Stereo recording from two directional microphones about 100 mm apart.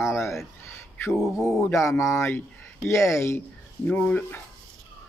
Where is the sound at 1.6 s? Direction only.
30° left (ahead or behind).